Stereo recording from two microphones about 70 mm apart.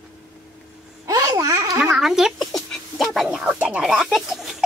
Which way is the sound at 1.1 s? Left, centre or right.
Right.